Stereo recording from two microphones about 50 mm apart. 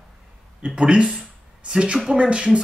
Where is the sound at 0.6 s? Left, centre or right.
Right.